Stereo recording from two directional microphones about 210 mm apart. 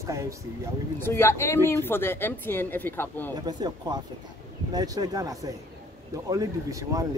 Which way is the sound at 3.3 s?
20° right (ahead or behind).